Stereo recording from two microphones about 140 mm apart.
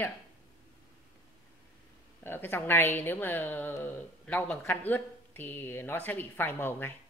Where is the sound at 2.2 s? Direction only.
15° left (ahead or behind).